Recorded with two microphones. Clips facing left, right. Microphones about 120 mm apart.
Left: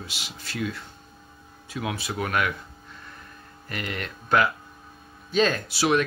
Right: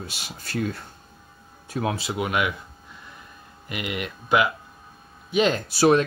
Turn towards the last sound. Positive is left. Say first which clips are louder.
# right 5 dB
turn(degrees=-40)  # may be behind; listen again after turning